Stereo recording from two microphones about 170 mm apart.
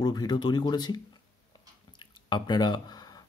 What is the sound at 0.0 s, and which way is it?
Speech, 25° left (ahead or behind).